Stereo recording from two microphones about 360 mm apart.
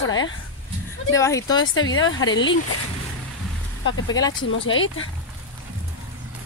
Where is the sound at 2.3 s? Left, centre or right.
Left.